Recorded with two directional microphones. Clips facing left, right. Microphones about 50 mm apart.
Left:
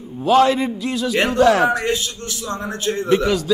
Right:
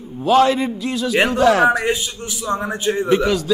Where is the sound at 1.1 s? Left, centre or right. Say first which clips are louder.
Even; centre.